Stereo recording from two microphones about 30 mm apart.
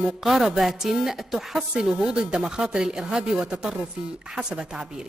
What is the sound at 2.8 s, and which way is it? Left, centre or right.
A man's voice, centre.